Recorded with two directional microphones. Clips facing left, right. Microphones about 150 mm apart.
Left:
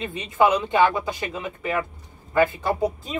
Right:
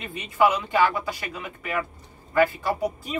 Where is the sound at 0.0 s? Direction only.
25° left (ahead or behind).